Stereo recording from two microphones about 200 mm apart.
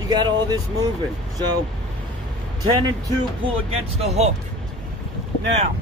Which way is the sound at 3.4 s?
30° right (ahead or behind).